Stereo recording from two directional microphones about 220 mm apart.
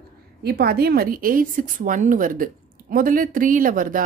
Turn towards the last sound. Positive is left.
turn(degrees=-40)  # may be behind; listen again after turning